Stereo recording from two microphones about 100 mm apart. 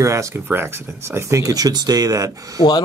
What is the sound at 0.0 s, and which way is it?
Speech, 30° right (ahead or behind).